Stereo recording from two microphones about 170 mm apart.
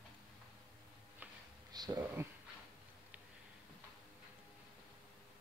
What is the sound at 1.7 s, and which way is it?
Speech, 20° right (ahead or behind).